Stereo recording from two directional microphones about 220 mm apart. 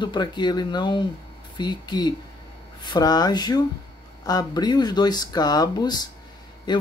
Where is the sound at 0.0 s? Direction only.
20° left (ahead or behind).